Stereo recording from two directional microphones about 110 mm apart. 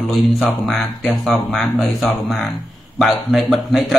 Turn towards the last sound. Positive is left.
turn(degrees=0)  # may be behind; listen again after turning